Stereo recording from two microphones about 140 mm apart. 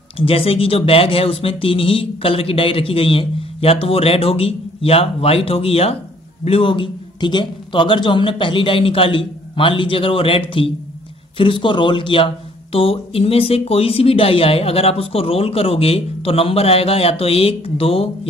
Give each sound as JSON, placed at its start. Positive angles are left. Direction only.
{"t": 0.2, "sound": "speech", "side_deg": 40}